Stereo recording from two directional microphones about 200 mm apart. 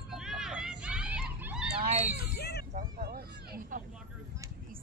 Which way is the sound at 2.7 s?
45° right (ahead or behind).